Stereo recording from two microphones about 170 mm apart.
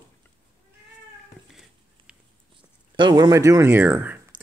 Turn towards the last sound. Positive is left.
turn(degrees=-10)  # may be behind; listen again after turning